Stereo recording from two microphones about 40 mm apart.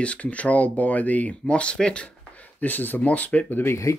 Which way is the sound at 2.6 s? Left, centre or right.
Left.